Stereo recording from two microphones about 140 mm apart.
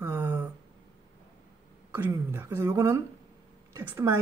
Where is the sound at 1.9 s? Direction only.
15° right (ahead or behind).